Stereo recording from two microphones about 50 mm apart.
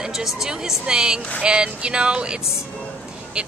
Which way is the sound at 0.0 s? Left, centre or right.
Centre.